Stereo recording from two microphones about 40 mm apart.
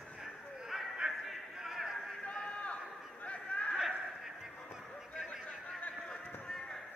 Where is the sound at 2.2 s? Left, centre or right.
Left.